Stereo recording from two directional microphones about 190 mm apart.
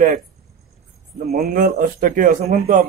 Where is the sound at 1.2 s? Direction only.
50° right (ahead or behind).